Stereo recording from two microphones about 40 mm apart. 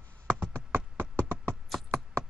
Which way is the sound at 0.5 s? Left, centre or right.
Right.